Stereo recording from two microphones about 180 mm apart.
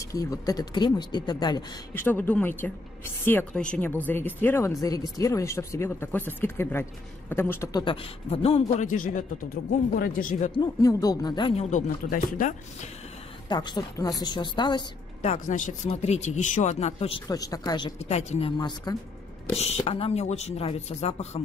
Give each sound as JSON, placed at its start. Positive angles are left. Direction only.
{"t": 0.0, "sound": "speech", "side_deg": 20}
{"t": 2.0, "sound": "speech", "side_deg": 10}
{"t": 7.8, "sound": "a man's voice", "side_deg": 30}
{"t": 10.5, "sound": "speech", "side_deg": 20}
{"t": 11.7, "sound": "a man's voice", "side_deg": 50}
{"t": 13.5, "sound": "speech", "side_deg": 25}
{"t": 15.2, "sound": "speech", "side_deg": 40}
{"t": 17.3, "sound": "speech", "side_deg": 20}
{"t": 17.9, "sound": "speech", "side_deg": 35}
{"t": 18.6, "sound": "speech", "side_deg": 25}
{"t": 19.5, "sound": "speech", "side_deg": 35}